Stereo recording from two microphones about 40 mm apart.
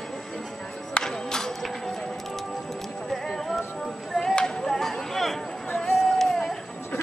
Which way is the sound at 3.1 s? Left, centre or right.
Centre.